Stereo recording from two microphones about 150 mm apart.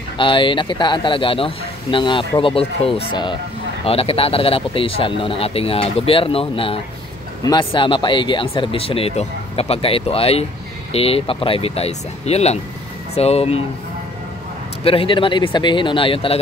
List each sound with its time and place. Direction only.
0.2 s speech: 35° left (ahead or behind)
14.8 s speech: 40° left (ahead or behind)